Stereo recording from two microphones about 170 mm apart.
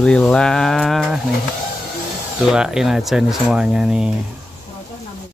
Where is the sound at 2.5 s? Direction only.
5° right (ahead or behind).